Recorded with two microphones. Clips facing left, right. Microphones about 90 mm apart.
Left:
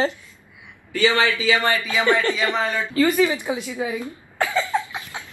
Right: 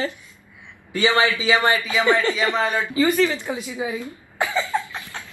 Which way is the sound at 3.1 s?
15° left (ahead or behind).